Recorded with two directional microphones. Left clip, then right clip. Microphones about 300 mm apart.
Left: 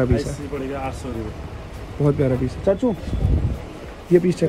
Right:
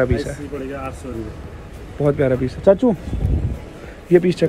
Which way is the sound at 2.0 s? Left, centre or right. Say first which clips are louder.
Right 3 dB; centre.